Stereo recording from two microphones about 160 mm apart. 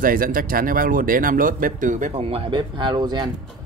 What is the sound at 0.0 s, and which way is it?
Speech, 60° right (ahead or behind).